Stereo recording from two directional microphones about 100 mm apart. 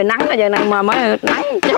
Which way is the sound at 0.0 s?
25° left (ahead or behind).